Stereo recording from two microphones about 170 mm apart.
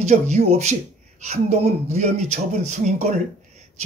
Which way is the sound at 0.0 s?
40° right (ahead or behind).